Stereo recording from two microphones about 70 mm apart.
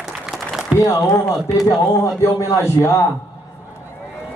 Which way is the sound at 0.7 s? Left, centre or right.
Left.